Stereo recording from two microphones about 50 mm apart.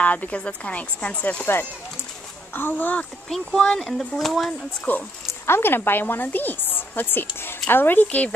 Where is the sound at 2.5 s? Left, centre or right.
Left.